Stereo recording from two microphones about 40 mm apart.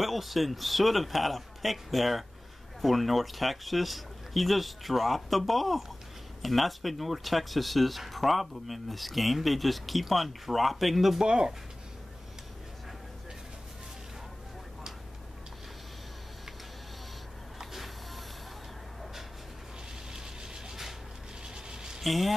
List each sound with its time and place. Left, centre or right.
0.0 s speech: centre
11.2 s speech: right
17.6 s vehicle: centre
20.1 s vehicle: centre
21.5 s a sound: centre
22.0 s speech: centre